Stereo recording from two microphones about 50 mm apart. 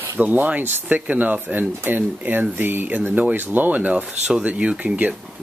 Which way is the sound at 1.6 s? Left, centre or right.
Right.